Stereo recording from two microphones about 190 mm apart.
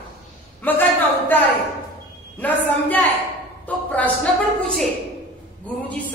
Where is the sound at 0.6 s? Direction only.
10° left (ahead or behind).